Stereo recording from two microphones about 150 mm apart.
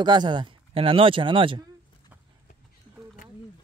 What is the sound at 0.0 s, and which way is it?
Speech, 30° right (ahead or behind).